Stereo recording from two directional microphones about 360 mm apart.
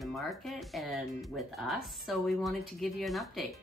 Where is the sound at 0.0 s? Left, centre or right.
Centre.